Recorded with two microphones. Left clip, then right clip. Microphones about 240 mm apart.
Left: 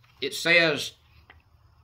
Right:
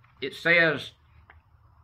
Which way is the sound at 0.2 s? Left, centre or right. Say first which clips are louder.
Even; centre.